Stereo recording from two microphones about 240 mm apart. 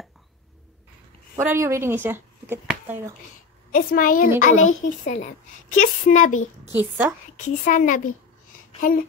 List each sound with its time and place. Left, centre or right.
1.3 s a woman's voice: centre
3.7 s a woman's voice: left
6.7 s a woman's voice: centre
7.3 s a woman's voice: left